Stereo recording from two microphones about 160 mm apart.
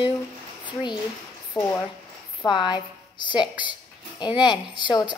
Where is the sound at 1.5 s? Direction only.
10° left (ahead or behind).